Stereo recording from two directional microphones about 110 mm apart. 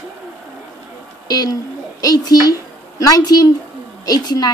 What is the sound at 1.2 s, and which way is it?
A woman's voice, 35° left (ahead or behind).